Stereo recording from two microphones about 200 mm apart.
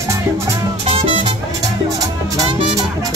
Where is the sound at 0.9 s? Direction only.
30° right (ahead or behind).